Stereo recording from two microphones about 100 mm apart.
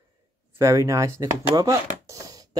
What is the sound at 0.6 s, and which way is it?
Speech, 30° right (ahead or behind).